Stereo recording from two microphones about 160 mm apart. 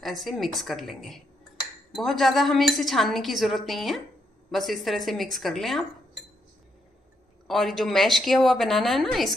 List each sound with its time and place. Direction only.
0.0 s speech: centre (ahead or behind)
7.4 s speech: centre (ahead or behind)